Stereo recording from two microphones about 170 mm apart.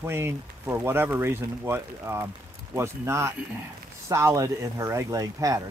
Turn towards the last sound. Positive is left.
turn(degrees=-20)  # may be behind; listen again after turning